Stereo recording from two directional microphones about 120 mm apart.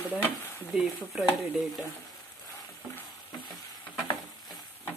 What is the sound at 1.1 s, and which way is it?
Speech, centre (ahead or behind).